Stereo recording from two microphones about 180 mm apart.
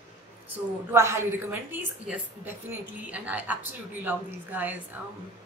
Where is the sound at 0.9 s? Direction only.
15° right (ahead or behind).